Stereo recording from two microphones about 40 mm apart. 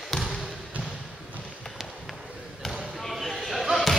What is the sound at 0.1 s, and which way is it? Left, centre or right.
Basketball bounce, centre.